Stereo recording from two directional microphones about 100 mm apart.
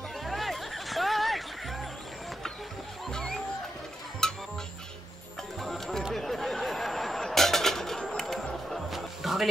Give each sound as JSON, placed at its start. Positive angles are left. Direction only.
{"t": 0.2, "sound": "music", "side_deg": 0}
{"t": 3.1, "sound": "music", "side_deg": 5}
{"t": 5.6, "sound": "a sound", "side_deg": 0}